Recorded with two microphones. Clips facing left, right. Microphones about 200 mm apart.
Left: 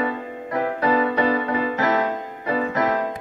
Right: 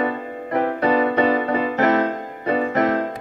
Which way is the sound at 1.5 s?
55° right (ahead or behind).